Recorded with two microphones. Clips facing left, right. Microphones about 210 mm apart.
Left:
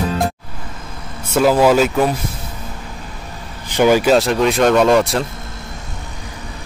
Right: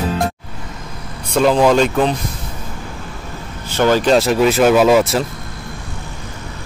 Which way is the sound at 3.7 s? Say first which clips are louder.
Left 1 dB; 15° left (ahead or behind).